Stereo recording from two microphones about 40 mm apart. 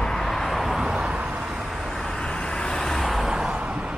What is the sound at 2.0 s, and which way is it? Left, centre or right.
Vehicle, centre.